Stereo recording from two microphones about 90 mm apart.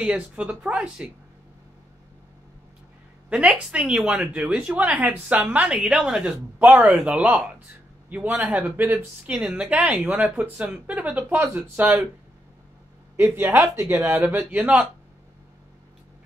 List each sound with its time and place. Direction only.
0.0 s speech: 15° right (ahead or behind)
3.3 s speech: 10° right (ahead or behind)
13.1 s speech: 25° right (ahead or behind)
13.9 s speech: 20° right (ahead or behind)